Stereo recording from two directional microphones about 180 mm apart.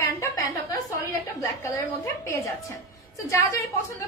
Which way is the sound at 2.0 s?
15° left (ahead or behind).